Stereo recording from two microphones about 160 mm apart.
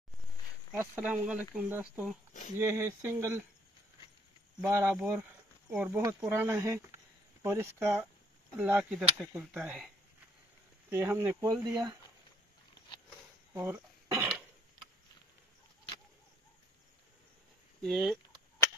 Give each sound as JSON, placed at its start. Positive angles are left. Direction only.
{"t": 0.7, "sound": "speech", "side_deg": -10}
{"t": 4.6, "sound": "speech", "side_deg": -15}
{"t": 10.9, "sound": "speech", "side_deg": -15}
{"t": 13.5, "sound": "throat clearing", "side_deg": -15}
{"t": 17.8, "sound": "speech", "side_deg": 0}